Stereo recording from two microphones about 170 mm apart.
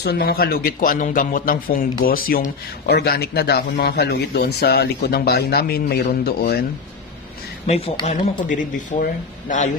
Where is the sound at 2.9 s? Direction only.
75° left (ahead or behind).